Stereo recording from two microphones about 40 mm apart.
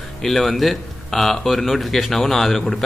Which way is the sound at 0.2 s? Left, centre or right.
Centre.